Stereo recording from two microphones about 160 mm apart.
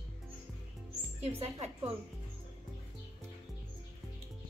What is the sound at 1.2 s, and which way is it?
Speech, 40° right (ahead or behind).